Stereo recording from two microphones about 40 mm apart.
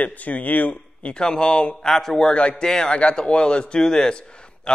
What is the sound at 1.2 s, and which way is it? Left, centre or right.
Speech, left.